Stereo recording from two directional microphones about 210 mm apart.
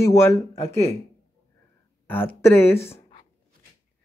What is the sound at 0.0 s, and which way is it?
Speech, 15° left (ahead or behind).